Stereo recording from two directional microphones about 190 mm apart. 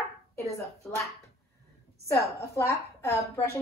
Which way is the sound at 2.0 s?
15° left (ahead or behind).